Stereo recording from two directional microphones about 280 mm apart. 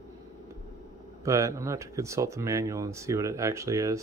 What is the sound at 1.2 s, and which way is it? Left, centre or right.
Speech, centre.